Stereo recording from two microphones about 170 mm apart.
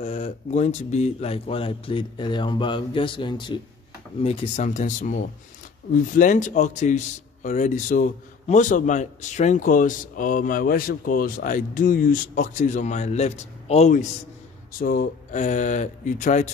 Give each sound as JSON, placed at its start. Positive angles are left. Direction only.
{"t": 0.0, "sound": "a man's voice", "side_deg": 40}
{"t": 14.8, "sound": "a man's voice", "side_deg": 55}